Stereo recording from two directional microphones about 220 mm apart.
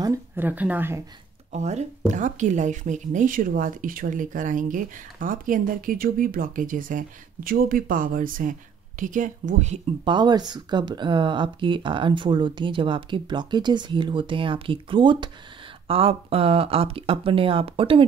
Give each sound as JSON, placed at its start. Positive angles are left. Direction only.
{"t": 0.0, "sound": "speech", "side_deg": -10}
{"t": 1.5, "sound": "speech", "side_deg": -30}